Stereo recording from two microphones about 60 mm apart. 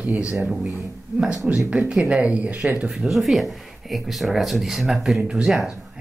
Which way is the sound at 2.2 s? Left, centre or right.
Right.